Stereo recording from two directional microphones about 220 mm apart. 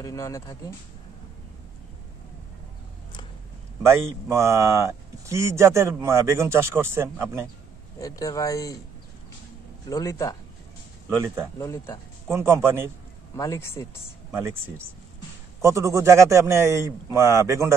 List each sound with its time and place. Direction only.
0.0 s speech: 15° left (ahead or behind)
3.8 s speech: 10° right (ahead or behind)
8.0 s speech: 15° left (ahead or behind)
9.8 s speech: 15° left (ahead or behind)
11.6 s speech: 15° left (ahead or behind)
12.3 s speech: 10° right (ahead or behind)
13.4 s speech: 15° left (ahead or behind)
14.3 s speech: 10° right (ahead or behind)
15.6 s speech: 15° right (ahead or behind)